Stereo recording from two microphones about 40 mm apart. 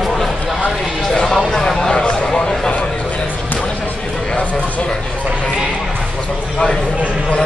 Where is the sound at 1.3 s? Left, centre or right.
Centre.